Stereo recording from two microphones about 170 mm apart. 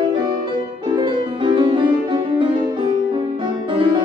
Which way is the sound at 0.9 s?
25° right (ahead or behind).